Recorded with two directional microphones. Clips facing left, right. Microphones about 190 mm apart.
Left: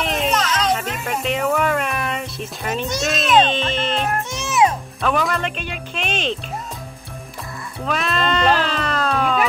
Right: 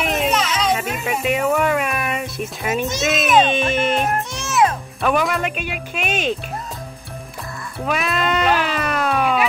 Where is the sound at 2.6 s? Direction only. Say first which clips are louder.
Right 2 dB; 5° right (ahead or behind).